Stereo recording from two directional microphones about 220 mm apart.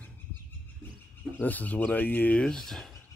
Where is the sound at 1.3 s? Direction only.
5° left (ahead or behind).